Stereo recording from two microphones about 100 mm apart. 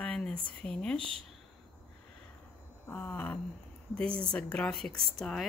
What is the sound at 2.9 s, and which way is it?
A woman's voice, 15° left (ahead or behind).